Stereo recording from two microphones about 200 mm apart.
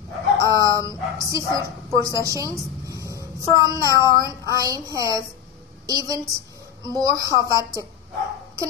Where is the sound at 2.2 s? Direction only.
15° right (ahead or behind).